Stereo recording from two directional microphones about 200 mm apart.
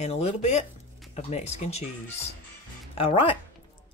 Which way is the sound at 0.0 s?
35° left (ahead or behind).